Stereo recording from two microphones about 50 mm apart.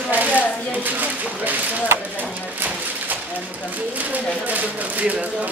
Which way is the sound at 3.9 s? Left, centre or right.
Right.